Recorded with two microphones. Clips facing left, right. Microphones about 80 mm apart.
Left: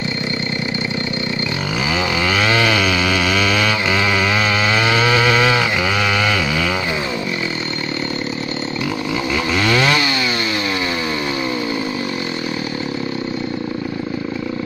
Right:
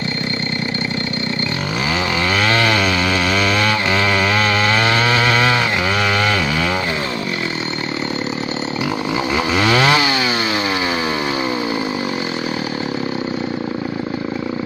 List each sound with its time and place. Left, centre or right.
2.3 s chainsaw: centre
2.7 s chainsaw: right
3.0 s chainsaw: centre
9.3 s chainsaw: right